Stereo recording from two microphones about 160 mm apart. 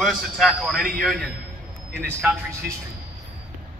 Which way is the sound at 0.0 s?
Centre (ahead or behind).